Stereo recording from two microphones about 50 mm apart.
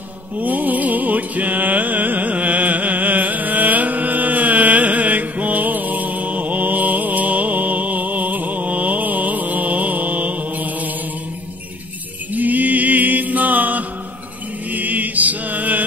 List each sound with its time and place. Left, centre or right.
0.4 s music: right
12.4 s music: right
14.7 s mantra: right